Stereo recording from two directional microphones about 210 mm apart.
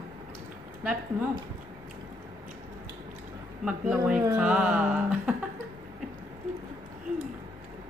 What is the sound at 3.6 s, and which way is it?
A woman's voice, 5° right (ahead or behind).